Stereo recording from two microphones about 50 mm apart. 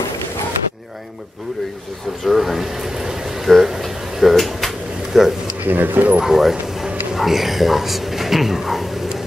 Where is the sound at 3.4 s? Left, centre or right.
Centre.